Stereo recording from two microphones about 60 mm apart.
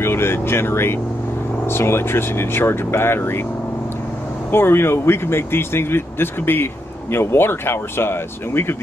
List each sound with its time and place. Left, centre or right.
0.0 s vehicle: left
1.7 s speech: left
4.5 s speech: left